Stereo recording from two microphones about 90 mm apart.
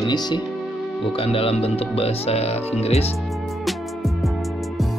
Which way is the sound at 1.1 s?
90° left.